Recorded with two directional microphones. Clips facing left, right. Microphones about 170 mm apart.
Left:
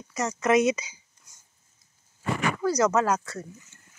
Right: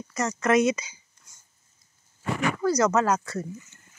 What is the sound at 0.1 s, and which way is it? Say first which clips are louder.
Speech: even; 10° left (ahead or behind).